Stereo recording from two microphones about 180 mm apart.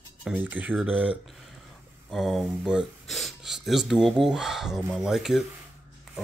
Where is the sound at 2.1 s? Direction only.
Centre (ahead or behind).